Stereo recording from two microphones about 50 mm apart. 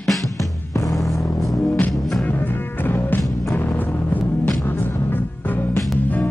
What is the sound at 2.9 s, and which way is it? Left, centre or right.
Music, left.